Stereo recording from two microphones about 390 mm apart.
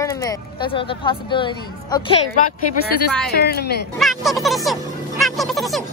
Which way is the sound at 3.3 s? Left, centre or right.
Left.